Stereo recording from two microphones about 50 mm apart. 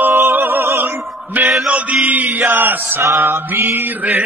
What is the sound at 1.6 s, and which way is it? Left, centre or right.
Mantra, right.